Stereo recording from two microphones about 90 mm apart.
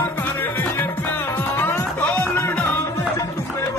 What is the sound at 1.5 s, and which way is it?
Music, 20° left (ahead or behind).